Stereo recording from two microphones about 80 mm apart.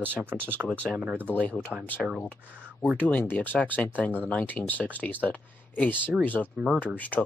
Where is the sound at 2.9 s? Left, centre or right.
Centre.